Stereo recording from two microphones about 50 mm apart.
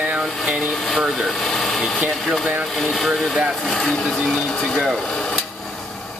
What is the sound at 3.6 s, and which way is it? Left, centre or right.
Speech, centre.